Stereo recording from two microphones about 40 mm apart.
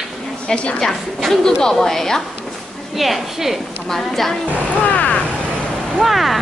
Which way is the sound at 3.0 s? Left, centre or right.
Centre.